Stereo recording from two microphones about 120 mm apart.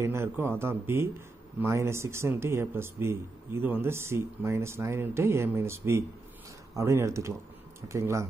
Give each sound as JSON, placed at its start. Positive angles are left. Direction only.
{"t": 0.0, "sound": "speech", "side_deg": -20}